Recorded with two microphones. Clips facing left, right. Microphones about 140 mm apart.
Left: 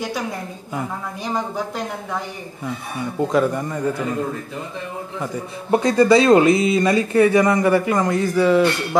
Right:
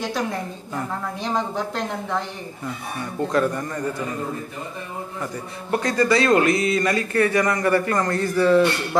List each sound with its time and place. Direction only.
0.7 s a woman's voice: 5° left (ahead or behind)
3.2 s speech: 15° left (ahead or behind)
5.8 s speech: 20° left (ahead or behind)